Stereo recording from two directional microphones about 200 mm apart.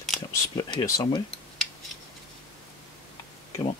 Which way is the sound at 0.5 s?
20° left (ahead or behind).